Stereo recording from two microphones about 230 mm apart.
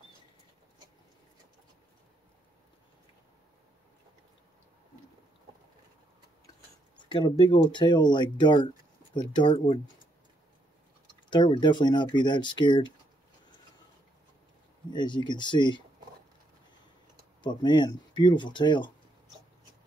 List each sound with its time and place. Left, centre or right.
7.1 s speech: centre
11.2 s speech: centre
14.9 s speech: centre
17.4 s speech: centre